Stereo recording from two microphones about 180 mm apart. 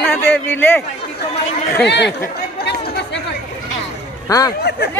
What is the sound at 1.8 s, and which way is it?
Speech, 70° left (ahead or behind).